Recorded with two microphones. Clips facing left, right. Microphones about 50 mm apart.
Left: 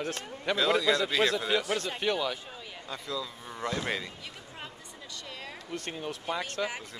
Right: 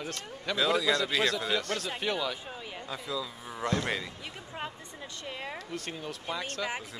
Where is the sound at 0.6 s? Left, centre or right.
Centre.